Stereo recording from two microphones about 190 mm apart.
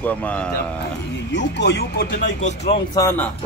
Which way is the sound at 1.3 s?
65° left (ahead or behind).